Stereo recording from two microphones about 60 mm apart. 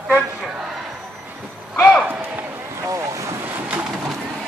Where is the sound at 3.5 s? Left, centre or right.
Right.